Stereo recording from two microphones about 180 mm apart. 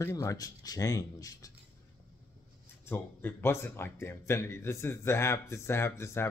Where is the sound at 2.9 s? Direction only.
10° left (ahead or behind).